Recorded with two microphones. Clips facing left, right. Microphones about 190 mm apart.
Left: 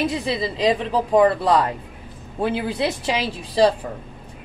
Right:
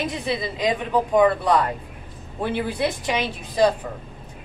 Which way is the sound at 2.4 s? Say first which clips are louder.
Left 2 dB; 25° left (ahead or behind).